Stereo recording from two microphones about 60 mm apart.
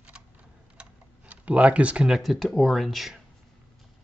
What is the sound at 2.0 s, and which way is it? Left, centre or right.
Speech, centre.